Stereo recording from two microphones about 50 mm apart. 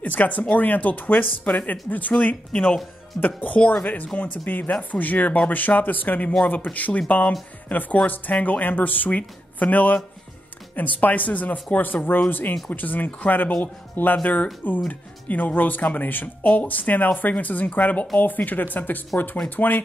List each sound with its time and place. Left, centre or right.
0.0 s speech: left